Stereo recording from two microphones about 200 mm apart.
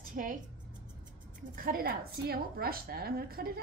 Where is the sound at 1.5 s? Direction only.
45° right (ahead or behind).